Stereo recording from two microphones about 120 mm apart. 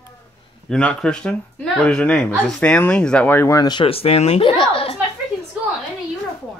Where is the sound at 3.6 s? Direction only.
35° left (ahead or behind).